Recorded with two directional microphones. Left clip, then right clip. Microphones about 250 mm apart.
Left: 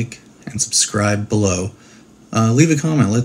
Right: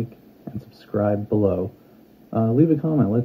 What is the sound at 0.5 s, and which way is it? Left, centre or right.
Speech, centre.